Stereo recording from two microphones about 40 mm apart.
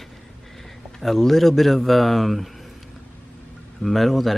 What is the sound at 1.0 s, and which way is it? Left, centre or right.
Speech, centre.